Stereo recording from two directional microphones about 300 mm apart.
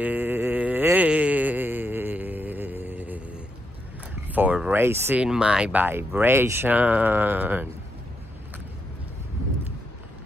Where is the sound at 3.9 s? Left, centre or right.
Centre.